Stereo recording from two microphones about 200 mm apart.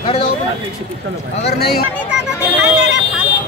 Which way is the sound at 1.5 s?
50° left (ahead or behind).